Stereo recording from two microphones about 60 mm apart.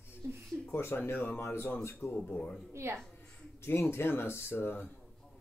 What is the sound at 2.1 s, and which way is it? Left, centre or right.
Speech, left.